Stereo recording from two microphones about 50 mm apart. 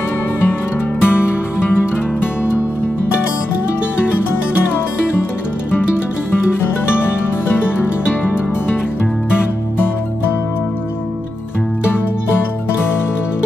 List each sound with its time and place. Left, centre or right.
1.0 s music: left
7.0 s music: left